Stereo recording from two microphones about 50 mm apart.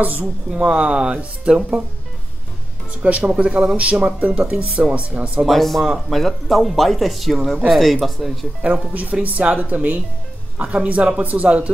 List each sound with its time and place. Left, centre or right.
0.0 s speech: right
0.5 s speech: centre
3.0 s speech: right
5.5 s speech: centre
9.2 s speech: right